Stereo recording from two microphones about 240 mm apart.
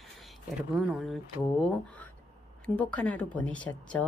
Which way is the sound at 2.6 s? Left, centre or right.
Centre.